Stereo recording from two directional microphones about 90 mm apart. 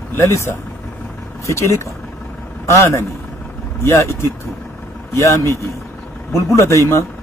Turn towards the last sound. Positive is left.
turn(degrees=35)  # may be behind; listen again after turning